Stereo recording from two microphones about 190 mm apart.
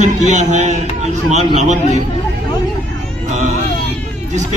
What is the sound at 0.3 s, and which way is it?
Speech, 40° right (ahead or behind).